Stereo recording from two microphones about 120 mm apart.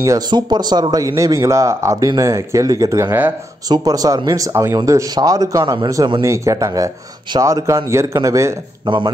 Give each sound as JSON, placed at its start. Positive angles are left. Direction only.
{"t": 0.3, "sound": "speech", "side_deg": -35}
{"t": 3.6, "sound": "speech", "side_deg": -30}
{"t": 8.8, "sound": "speech", "side_deg": -40}